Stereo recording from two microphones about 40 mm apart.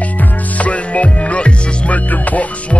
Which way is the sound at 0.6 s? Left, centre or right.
Left.